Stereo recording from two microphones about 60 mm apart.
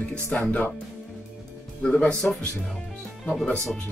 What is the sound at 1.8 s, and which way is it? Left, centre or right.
Speech, centre.